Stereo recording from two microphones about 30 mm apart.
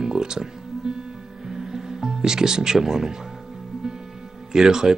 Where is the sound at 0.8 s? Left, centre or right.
Right.